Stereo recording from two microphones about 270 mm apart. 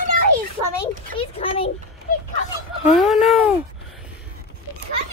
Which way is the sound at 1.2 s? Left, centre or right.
Left.